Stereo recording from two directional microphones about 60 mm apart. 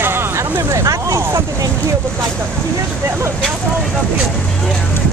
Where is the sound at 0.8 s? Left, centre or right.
Right.